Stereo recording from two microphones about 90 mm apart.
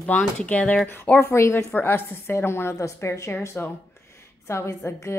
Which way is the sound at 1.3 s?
30° left (ahead or behind).